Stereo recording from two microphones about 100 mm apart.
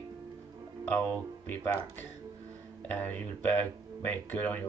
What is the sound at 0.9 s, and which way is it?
Speech, 20° left (ahead or behind).